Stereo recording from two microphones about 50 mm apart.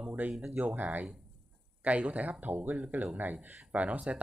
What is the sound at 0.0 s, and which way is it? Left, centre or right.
Speech, right.